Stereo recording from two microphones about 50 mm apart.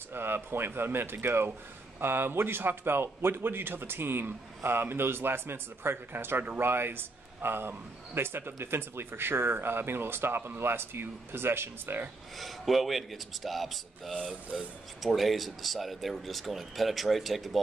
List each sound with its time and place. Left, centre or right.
0.1 s speech: right
12.4 s speech: centre